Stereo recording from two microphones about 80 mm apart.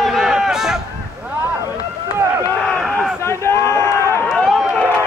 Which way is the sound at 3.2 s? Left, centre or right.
Left.